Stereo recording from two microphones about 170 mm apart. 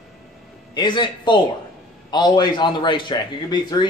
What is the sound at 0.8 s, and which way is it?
A man's voice, 25° left (ahead or behind).